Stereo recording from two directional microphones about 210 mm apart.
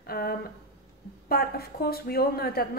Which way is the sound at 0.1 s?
45° left (ahead or behind).